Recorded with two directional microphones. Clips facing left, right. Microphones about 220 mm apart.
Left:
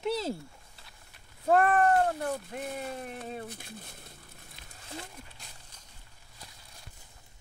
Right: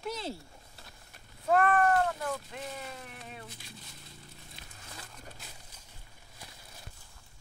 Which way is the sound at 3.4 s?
55° left (ahead or behind).